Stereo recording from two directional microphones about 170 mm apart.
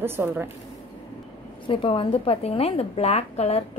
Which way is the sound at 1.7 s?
30° left (ahead or behind).